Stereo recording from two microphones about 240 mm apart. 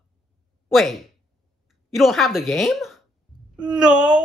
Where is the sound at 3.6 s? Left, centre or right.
Centre.